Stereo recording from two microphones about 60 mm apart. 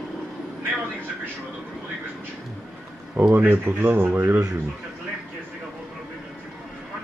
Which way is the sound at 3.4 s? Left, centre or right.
Right.